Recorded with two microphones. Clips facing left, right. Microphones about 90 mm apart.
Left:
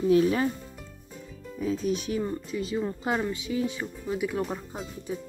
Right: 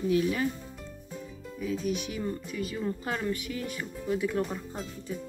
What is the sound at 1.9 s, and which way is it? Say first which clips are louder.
Speech: left 3 dB; 35° left (ahead or behind).